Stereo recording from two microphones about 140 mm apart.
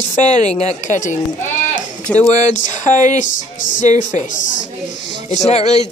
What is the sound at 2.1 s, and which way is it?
A woman's voice, 55° left (ahead or behind).